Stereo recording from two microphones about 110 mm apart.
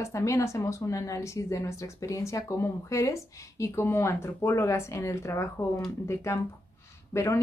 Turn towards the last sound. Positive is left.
turn(degrees=25)  # may be behind; listen again after turning